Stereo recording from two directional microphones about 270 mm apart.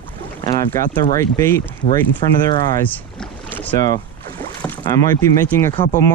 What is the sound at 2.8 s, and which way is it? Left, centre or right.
Boat, centre.